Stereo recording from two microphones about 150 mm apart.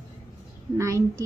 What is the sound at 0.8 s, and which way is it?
Speech, 20° right (ahead or behind).